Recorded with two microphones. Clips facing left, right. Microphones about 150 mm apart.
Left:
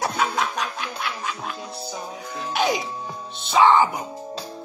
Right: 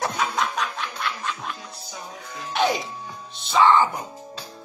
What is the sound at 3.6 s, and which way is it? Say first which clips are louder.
Speech: left 1 dB; 15° left (ahead or behind).